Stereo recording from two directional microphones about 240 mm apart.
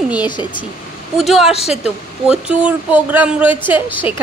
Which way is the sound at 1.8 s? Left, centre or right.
Centre.